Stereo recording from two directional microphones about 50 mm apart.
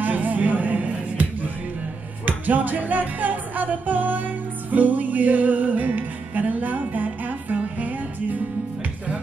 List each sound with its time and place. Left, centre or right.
0.0 s music: right